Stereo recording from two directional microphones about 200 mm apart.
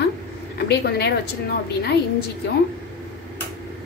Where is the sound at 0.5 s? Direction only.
55° left (ahead or behind).